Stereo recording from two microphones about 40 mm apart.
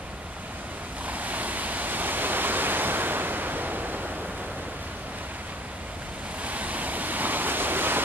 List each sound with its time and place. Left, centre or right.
1.0 s pink noise: right
6.4 s waves: right